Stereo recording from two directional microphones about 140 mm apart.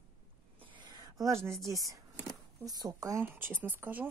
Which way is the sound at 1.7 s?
25° right (ahead or behind).